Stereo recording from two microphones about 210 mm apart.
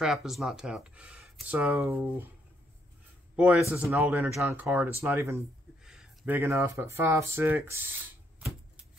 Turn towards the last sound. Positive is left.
turn(degrees=-10)  # may be behind; listen again after turning